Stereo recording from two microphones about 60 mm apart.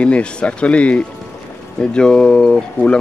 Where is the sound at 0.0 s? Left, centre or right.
Centre.